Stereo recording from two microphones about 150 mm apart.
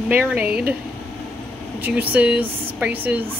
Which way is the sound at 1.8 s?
10° right (ahead or behind).